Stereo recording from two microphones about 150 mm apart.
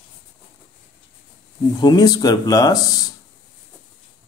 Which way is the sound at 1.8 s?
25° left (ahead or behind).